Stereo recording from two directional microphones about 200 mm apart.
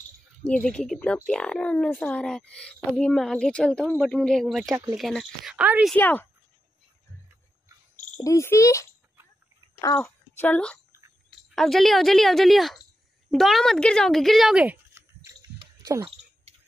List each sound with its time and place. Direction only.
0.7 s speech: 5° left (ahead or behind)
5.9 s a child's voice: 10° left (ahead or behind)
8.2 s a child's voice: 15° left (ahead or behind); by 15.3 s 10° right (ahead or behind)
15.6 s a sound: 15° right (ahead or behind)